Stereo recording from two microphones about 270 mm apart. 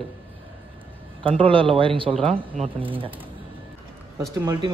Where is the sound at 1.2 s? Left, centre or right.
Centre.